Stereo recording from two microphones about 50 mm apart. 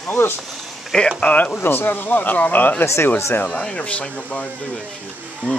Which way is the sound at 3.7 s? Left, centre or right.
Left.